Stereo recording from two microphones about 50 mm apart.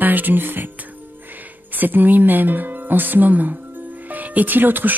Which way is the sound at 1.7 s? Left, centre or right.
Right.